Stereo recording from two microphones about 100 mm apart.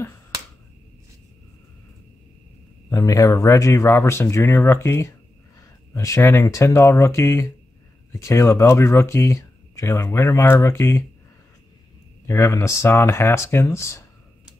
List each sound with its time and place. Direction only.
2.9 s speech: 35° left (ahead or behind)
12.3 s speech: 30° left (ahead or behind)